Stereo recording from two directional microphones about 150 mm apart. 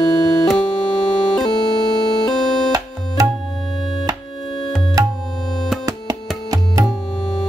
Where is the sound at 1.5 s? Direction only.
25° left (ahead or behind).